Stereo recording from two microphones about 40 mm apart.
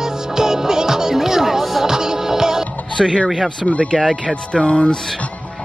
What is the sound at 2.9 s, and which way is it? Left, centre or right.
Speech, centre.